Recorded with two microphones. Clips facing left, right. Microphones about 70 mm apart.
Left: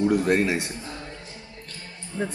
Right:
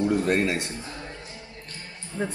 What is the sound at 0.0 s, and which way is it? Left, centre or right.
Speech, centre.